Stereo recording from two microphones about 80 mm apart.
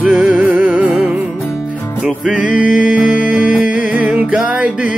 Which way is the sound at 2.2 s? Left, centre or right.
Centre.